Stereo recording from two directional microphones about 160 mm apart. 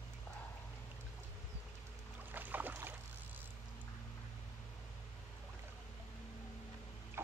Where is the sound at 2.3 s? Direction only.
10° right (ahead or behind).